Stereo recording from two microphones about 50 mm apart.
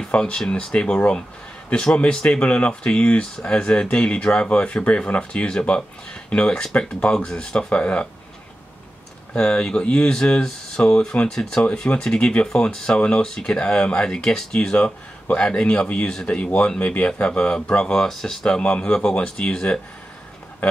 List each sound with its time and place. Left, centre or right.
0.0 s speech: centre
9.3 s speech: centre
17.9 s speech: centre
18.4 s speech: left